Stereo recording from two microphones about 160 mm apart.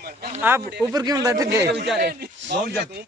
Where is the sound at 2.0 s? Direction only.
75° right (ahead or behind).